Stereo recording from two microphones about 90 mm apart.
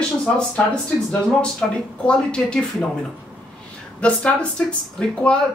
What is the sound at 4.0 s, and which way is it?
A woman's voice, 15° left (ahead or behind).